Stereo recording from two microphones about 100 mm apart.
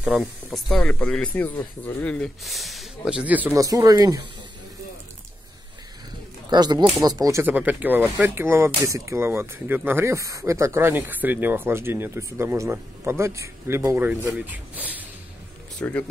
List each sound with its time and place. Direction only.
0.2 s speech: centre (ahead or behind); by 2.1 s 20° left (ahead or behind)
2.1 s speech: centre (ahead or behind)
3.1 s speech: 10° right (ahead or behind)
3.5 s speech: 35° right (ahead or behind)
6.5 s speech: 45° right (ahead or behind)
7.4 s speech: 15° right (ahead or behind)
15.8 s speech: 15° left (ahead or behind)